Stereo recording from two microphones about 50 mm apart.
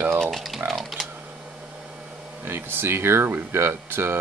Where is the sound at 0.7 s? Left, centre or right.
Centre.